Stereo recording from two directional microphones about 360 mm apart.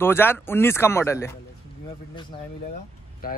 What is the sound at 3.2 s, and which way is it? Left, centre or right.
Speech, left.